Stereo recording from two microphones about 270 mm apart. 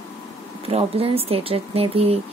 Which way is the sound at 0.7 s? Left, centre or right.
Right.